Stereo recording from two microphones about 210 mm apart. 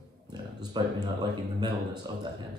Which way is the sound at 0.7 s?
20° right (ahead or behind).